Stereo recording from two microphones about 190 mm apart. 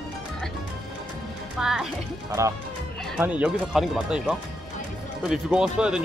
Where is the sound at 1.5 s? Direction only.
Centre (ahead or behind).